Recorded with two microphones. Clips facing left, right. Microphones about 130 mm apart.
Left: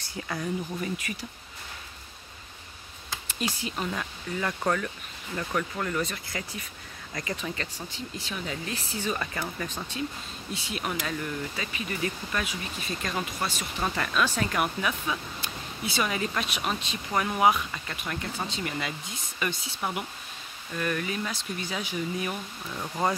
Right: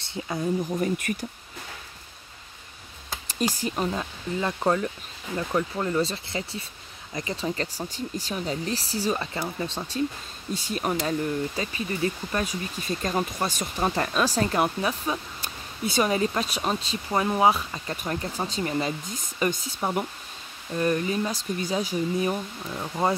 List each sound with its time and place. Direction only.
0.0 s speech: 25° right (ahead or behind)
0.7 s speech: 50° right (ahead or behind)
3.3 s speech: 40° right (ahead or behind)